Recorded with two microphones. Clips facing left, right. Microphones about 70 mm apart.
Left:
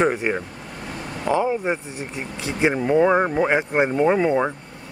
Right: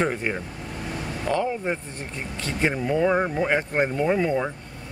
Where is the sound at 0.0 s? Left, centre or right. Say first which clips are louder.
Left 5 dB; centre.